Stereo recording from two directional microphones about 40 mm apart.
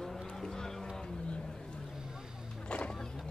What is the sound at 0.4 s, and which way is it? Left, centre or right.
Vehicle, centre.